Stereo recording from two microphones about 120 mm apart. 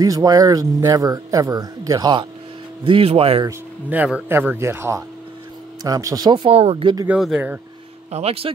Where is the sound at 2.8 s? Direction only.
50° right (ahead or behind).